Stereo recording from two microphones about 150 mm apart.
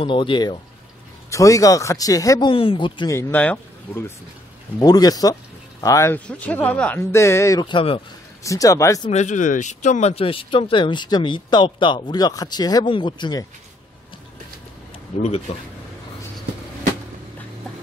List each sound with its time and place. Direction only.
0.0 s speech: 35° left (ahead or behind)
2.5 s speech: 35° left (ahead or behind)
3.1 s speech: 15° left (ahead or behind)
4.7 s speech: 25° left (ahead or behind)
7.7 s speech: 35° left (ahead or behind)
8.5 s speech: 20° left (ahead or behind)
9.1 s speech: 55° left (ahead or behind); by 13.5 s 30° left (ahead or behind)